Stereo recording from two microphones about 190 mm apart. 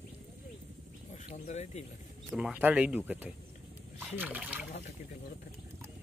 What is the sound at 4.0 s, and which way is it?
Speech, 10° right (ahead or behind).